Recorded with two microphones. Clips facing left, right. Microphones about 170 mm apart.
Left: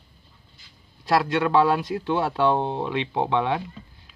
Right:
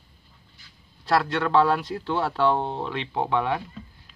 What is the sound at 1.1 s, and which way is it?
Speech, 15° left (ahead or behind).